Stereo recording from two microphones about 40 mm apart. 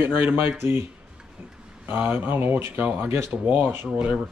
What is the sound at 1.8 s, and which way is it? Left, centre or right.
Speech, right.